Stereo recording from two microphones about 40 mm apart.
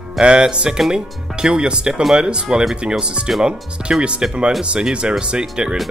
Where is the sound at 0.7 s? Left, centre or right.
Centre.